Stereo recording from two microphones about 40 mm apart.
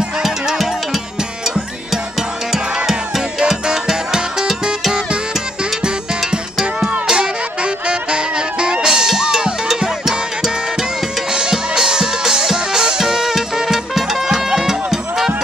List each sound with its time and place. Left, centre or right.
0.2 s music: centre
2.5 s music: centre
7.1 s music: right
8.8 s music: centre